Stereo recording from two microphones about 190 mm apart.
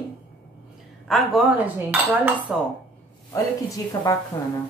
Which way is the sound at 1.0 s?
Centre (ahead or behind).